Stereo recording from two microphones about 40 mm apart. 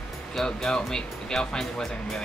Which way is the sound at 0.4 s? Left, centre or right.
Centre.